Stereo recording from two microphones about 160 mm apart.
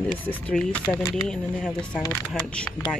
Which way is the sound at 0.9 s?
20° left (ahead or behind).